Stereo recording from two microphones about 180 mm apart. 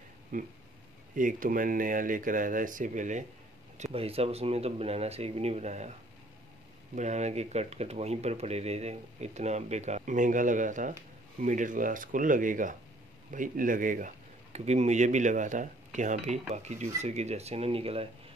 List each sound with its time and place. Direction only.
0.3 s speech: 50° right (ahead or behind)
7.0 s speech: 40° right (ahead or behind)